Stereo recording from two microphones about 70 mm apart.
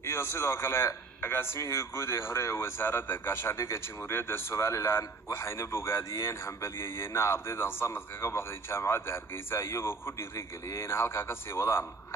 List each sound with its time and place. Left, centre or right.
0.0 s a man's voice: left